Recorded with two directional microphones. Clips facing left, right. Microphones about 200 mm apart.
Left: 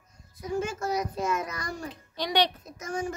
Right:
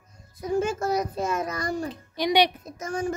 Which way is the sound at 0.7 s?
30° right (ahead or behind).